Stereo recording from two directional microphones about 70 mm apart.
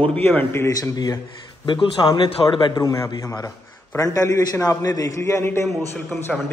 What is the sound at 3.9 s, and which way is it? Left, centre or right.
A man's voice, left.